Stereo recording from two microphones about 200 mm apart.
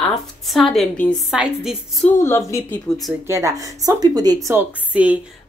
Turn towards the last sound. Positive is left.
turn(degrees=-5)  # may be behind; listen again after turning